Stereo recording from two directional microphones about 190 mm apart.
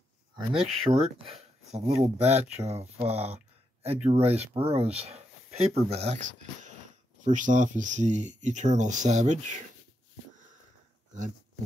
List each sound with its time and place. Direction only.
0.5 s speech: 30° right (ahead or behind)